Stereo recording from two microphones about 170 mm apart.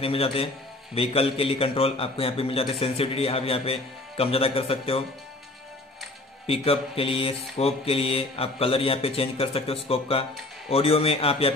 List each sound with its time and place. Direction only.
0.0 s a man's voice: 35° left (ahead or behind)
6.4 s a man's voice: 35° left (ahead or behind)